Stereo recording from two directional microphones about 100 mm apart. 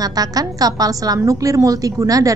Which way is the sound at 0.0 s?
40° right (ahead or behind).